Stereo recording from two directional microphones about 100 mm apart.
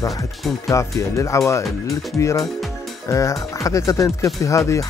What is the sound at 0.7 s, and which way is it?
Speech, 30° left (ahead or behind).